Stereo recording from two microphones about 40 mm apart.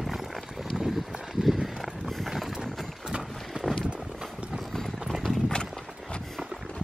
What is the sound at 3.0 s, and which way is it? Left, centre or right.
Run, centre.